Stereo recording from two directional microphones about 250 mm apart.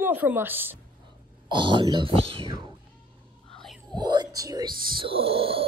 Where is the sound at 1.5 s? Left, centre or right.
Centre.